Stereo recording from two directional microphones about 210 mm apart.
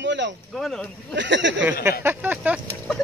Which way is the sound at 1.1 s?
60° right (ahead or behind).